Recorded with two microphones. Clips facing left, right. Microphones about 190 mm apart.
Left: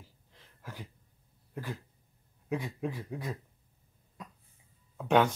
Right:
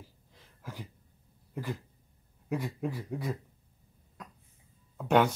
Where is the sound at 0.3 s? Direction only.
10° right (ahead or behind).